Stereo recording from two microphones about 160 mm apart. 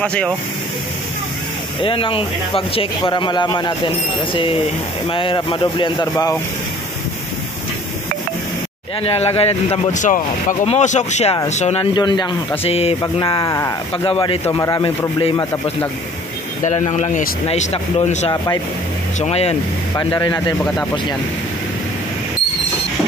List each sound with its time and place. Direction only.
0.0 s speech: 5° left (ahead or behind)
1.8 s speech: 35° left (ahead or behind)
9.0 s speech: 40° left (ahead or behind)
11.8 s speech: 30° left (ahead or behind)
12.6 s speech: 40° left (ahead or behind)
13.0 s speech: 30° left (ahead or behind)
13.9 s speech: 35° left (ahead or behind)
16.6 s speech: 45° left (ahead or behind)
20.0 s speech: 25° left (ahead or behind)